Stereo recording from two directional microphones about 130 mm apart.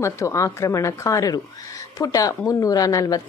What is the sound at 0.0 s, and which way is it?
A woman's voice, 25° left (ahead or behind).